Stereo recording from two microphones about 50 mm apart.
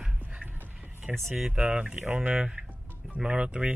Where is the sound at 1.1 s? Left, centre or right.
Centre.